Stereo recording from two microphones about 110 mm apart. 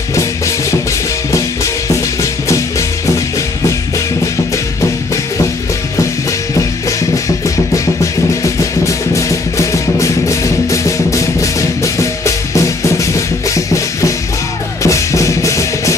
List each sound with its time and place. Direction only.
0.1 s music: 30° left (ahead or behind)
7.4 s music: 30° left (ahead or behind)
14.8 s drum: 30° left (ahead or behind)